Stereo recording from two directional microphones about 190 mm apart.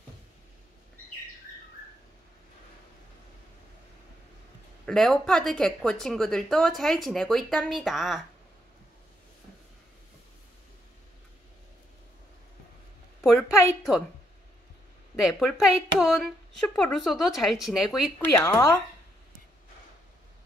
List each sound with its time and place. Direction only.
4.8 s speech: centre (ahead or behind)
13.2 s a sound: 5° left (ahead or behind)
15.1 s speech: centre (ahead or behind)
18.3 s a woman's voice: 15° left (ahead or behind)